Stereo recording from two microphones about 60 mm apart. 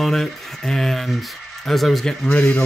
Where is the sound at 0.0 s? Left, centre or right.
Centre.